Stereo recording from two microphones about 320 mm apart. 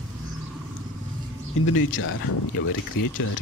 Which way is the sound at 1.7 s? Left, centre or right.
Left.